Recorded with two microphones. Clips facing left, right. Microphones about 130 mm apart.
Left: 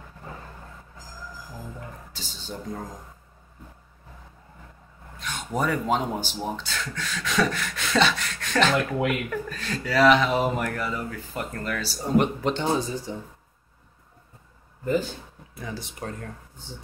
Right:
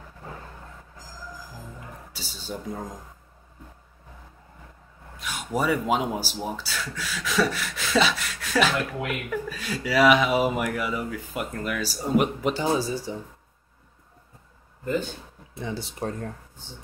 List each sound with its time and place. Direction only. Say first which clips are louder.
2.1 s speech: right 3 dB; 10° right (ahead or behind)
5.2 s speech: right 1 dB; 10° right (ahead or behind)
15.5 s speech: right 3 dB; 25° right (ahead or behind)